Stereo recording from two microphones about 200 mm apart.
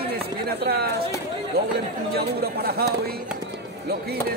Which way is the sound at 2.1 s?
50° right (ahead or behind).